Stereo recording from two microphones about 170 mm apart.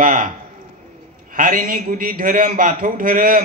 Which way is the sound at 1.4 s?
55° right (ahead or behind).